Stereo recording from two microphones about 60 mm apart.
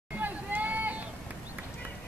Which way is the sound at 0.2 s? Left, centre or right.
Right.